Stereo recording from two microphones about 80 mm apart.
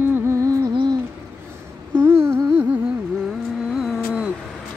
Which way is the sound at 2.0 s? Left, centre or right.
Right.